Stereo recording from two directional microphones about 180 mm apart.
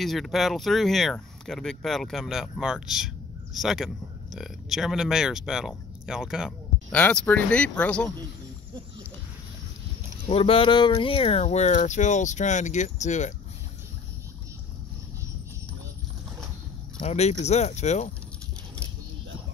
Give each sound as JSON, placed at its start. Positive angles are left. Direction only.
{"t": 0.0, "sound": "speech", "side_deg": 0}
{"t": 7.0, "sound": "speech", "side_deg": 10}
{"t": 10.2, "sound": "speech", "side_deg": 30}
{"t": 17.0, "sound": "speech", "side_deg": 35}